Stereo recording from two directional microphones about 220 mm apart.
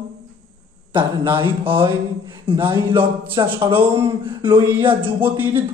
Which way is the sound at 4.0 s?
25° right (ahead or behind).